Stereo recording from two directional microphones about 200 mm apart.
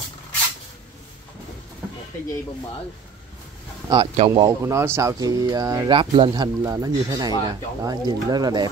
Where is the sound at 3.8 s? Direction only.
25° right (ahead or behind).